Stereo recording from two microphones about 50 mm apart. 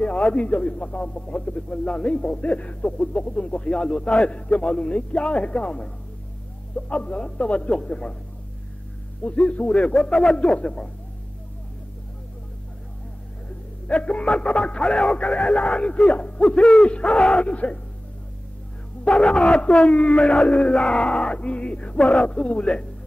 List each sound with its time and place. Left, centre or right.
0.0 s speech: left
9.2 s speech: left
13.8 s speech: left
19.0 s speech: centre